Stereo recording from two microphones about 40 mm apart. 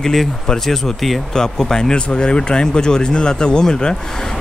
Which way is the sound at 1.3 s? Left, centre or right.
Centre.